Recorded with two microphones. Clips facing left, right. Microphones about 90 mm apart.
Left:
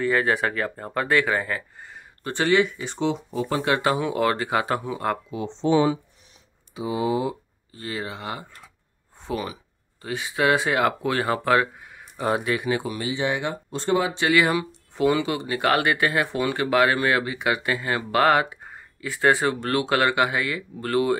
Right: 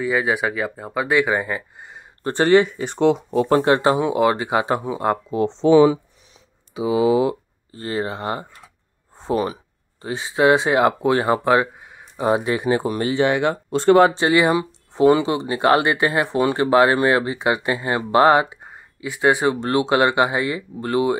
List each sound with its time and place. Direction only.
0.0 s speech: 10° right (ahead or behind)
2.2 s speech: 40° right (ahead or behind); by 3.6 s 55° right (ahead or behind)
3.6 s speech: 30° right (ahead or behind)
5.6 s speech: 90° right
7.7 s speech: 35° right (ahead or behind)
10.0 s speech: 25° right (ahead or behind)
13.0 s speech: 65° right (ahead or behind)
14.1 s speech: 30° right (ahead or behind)